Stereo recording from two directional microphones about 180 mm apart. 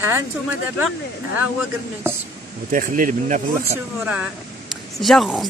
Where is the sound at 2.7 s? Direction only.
50° right (ahead or behind).